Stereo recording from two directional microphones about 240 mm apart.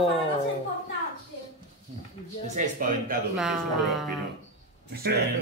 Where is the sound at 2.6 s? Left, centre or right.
Right.